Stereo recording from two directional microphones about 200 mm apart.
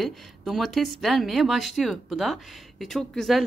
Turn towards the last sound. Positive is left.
turn(degrees=0)  # may be behind; listen again after turning